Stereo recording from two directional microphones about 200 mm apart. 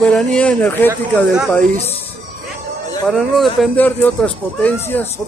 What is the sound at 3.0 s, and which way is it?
Speech, centre (ahead or behind).